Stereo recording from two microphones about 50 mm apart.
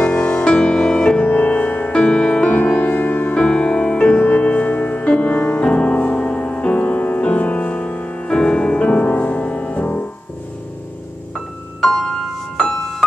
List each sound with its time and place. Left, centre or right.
0.0 s music: left
1.2 s music: left
3.3 s music: left
4.2 s music: left
5.3 s music: left
11.8 s music: centre
12.5 s music: centre